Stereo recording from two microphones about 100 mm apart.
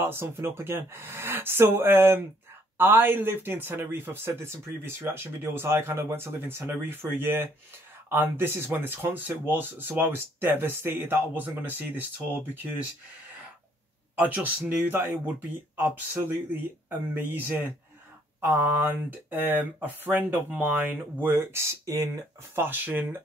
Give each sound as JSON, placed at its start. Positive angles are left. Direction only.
{"t": 0.0, "sound": "speech", "side_deg": -25}
{"t": 14.1, "sound": "speech", "side_deg": -15}
{"t": 22.6, "sound": "speech", "side_deg": -20}